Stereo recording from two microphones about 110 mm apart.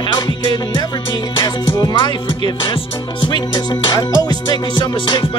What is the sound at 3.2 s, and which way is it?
Music, 45° left (ahead or behind).